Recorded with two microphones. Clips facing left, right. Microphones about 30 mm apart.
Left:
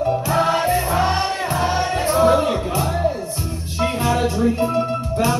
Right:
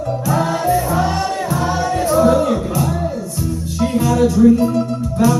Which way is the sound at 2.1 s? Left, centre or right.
Left.